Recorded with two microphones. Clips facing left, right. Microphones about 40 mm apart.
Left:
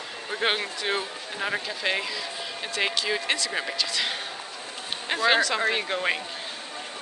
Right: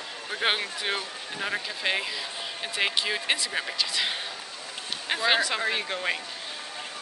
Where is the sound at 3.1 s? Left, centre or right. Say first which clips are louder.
Left 1 dB; centre.